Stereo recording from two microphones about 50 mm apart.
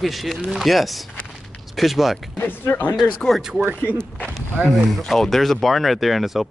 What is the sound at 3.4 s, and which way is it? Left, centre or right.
Speech, centre.